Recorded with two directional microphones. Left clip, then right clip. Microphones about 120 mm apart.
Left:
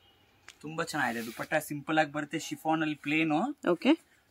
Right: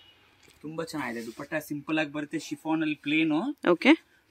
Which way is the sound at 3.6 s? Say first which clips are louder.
Right 9 dB; 20° right (ahead or behind).